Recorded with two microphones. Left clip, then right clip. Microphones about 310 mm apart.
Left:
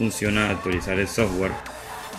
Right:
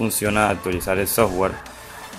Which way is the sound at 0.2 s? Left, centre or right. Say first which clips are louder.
Right 5 dB; centre.